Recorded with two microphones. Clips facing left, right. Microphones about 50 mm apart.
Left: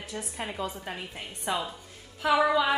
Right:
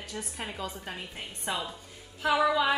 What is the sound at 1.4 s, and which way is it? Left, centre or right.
Speech, centre.